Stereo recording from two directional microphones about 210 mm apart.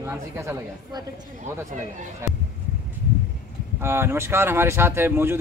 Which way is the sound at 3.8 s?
10° right (ahead or behind).